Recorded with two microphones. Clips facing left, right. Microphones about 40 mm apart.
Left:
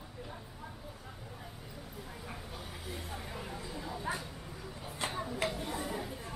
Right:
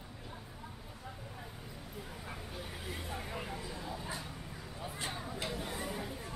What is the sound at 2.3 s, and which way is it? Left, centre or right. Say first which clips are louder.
Vehicle: right 1 dB; centre.